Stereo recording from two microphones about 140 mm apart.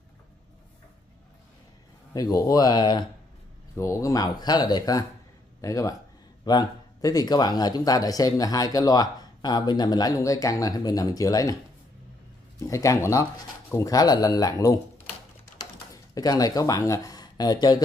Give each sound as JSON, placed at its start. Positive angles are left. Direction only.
{"t": 2.1, "sound": "a man's voice", "side_deg": 25}
{"t": 3.7, "sound": "a man's voice", "side_deg": 20}
{"t": 12.5, "sound": "a man's voice", "side_deg": 25}
{"t": 15.5, "sound": "a sound", "side_deg": 25}